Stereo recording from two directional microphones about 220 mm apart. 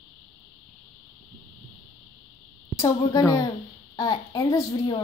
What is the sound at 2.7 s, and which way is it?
A woman's voice, 15° left (ahead or behind).